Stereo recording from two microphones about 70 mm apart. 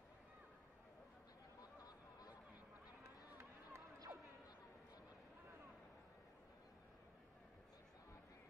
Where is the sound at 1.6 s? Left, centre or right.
Left.